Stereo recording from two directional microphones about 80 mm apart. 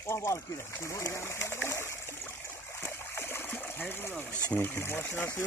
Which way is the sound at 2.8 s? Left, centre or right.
Left.